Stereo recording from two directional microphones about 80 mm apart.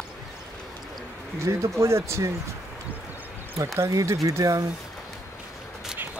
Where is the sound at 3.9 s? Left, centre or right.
Right.